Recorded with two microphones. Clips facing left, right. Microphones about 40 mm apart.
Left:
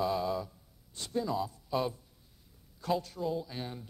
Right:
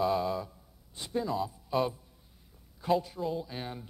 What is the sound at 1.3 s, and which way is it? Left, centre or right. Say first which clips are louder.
Speech: right 2 dB; centre.